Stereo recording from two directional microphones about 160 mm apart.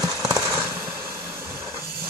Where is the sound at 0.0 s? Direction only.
20° right (ahead or behind).